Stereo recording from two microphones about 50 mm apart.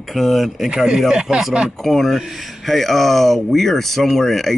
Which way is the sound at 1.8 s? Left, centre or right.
Centre.